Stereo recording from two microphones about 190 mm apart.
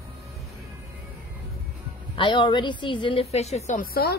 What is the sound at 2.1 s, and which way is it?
A woman's voice, 25° left (ahead or behind).